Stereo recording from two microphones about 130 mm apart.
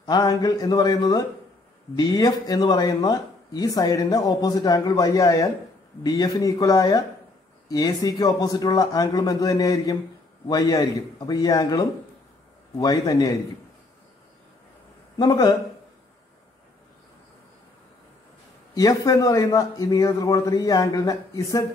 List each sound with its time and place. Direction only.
0.0 s speech: 30° left (ahead or behind)
15.1 s speech: 30° left (ahead or behind)
18.8 s speech: 25° left (ahead or behind)